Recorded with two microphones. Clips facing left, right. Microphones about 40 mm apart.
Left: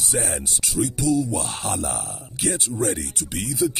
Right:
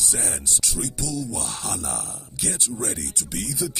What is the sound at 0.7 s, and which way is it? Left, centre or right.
Speech, left.